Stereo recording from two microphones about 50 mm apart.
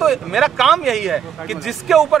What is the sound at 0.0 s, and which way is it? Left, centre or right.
Speech, centre.